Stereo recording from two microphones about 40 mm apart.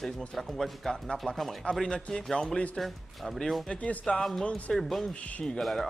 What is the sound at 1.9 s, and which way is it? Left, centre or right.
Speech, centre.